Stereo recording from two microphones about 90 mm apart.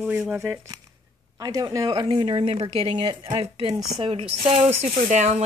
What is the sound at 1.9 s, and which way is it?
A woman's voice, 55° right (ahead or behind).